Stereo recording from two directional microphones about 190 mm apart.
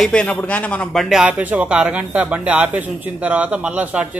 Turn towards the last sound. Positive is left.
turn(degrees=-5)  # may be behind; listen again after turning